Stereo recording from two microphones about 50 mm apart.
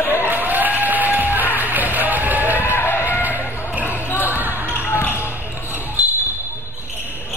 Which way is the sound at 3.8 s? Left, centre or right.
Left.